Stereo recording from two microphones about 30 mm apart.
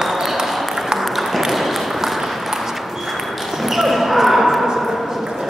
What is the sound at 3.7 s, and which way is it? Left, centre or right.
Basketball bounce, centre.